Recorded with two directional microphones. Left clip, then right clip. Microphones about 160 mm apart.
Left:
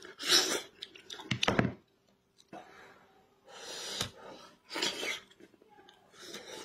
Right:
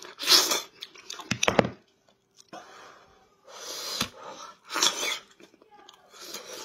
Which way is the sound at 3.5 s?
20° left (ahead or behind).